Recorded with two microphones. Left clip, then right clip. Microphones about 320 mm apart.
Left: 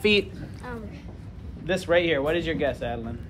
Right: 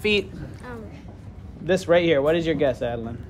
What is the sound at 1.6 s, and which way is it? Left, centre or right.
A man's voice, right.